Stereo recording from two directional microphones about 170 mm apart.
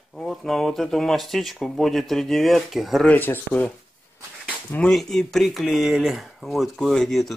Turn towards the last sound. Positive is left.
turn(degrees=0)  # may be behind; listen again after turning